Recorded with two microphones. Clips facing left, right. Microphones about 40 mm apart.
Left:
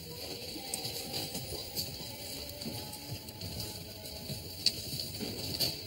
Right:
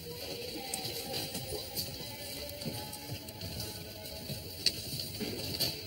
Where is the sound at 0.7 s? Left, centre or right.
Centre.